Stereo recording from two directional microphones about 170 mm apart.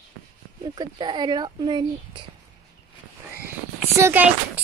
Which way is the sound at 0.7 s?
25° right (ahead or behind).